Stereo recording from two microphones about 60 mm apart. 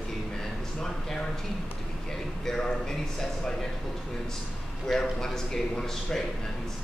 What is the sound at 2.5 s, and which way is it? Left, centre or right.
Speech, centre.